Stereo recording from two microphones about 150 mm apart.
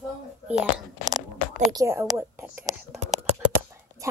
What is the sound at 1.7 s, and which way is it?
Speech, 20° right (ahead or behind).